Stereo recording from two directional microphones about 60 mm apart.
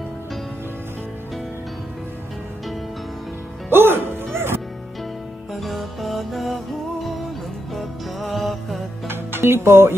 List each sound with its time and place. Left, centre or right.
3.7 s music: right
5.5 s music: centre
7.7 s music: centre
9.0 s music: right